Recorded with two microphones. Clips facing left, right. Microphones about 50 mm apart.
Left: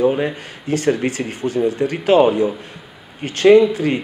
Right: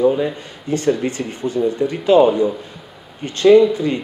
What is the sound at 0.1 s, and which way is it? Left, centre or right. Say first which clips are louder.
Speech: even; left.